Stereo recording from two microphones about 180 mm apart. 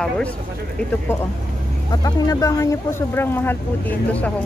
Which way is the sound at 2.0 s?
20° left (ahead or behind).